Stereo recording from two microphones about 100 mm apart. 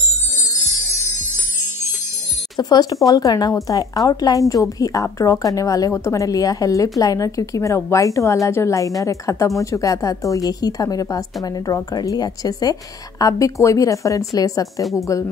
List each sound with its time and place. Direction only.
2.7 s a woman's voice: 40° left (ahead or behind)
14.8 s speech: centre (ahead or behind)